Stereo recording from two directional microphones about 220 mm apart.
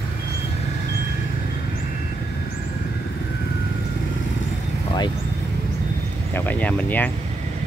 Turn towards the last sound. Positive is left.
turn(degrees=5)  # may be behind; listen again after turning